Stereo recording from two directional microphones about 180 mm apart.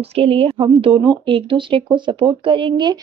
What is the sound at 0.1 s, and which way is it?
A woman's voice, 30° right (ahead or behind).